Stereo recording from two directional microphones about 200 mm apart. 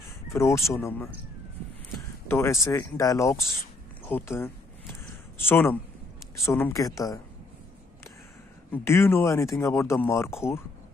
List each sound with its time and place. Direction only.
0.3 s speech: 15° left (ahead or behind)
2.2 s speech: 15° left (ahead or behind)
5.0 s a sound: 10° left (ahead or behind)
6.5 s speech: 15° left (ahead or behind)
8.7 s speech: 10° left (ahead or behind)